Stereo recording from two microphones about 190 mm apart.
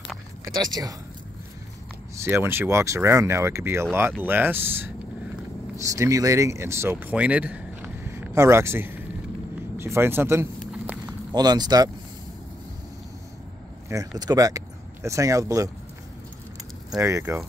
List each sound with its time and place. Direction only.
0.5 s speech: 20° right (ahead or behind)
2.2 s speech: 15° right (ahead or behind)
10.6 s walk: 5° right (ahead or behind)
11.3 s speech: 20° right (ahead or behind)
13.8 s speech: 20° right (ahead or behind)
17.0 s speech: 15° right (ahead or behind)